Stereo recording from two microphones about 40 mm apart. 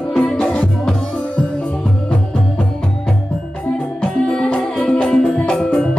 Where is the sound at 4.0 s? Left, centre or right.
Left.